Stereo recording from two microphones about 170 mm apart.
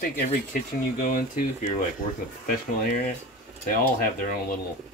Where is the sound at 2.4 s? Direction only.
55° left (ahead or behind).